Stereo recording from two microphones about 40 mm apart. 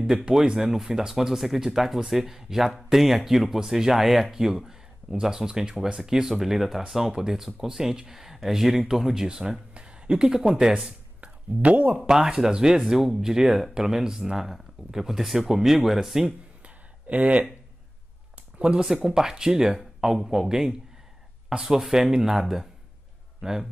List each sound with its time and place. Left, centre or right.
0.0 s speech: centre
10.9 s a sound: right
12.1 s speech: centre
16.6 s a sound: right
18.6 s speech: right
19.0 s speech: centre